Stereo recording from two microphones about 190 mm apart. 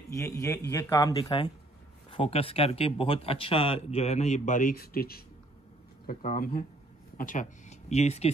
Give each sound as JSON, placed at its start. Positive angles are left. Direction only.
{"t": 0.1, "sound": "a man's voice", "side_deg": 15}
{"t": 1.1, "sound": "speech", "side_deg": 30}